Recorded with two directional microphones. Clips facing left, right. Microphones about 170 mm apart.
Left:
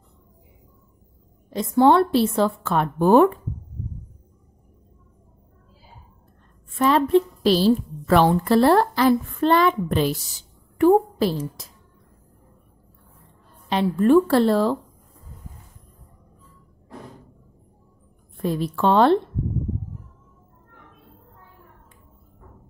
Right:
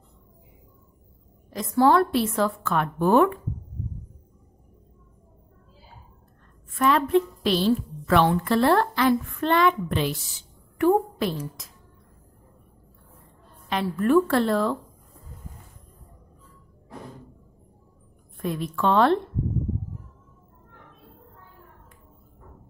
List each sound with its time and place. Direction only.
1.5 s a woman's voice: 25° left (ahead or behind)
6.7 s a woman's voice: 30° left (ahead or behind)
13.7 s a woman's voice: 30° left (ahead or behind)
18.4 s a woman's voice: 30° left (ahead or behind)